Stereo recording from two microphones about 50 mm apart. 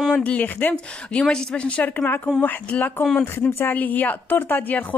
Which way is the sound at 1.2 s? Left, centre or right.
Centre.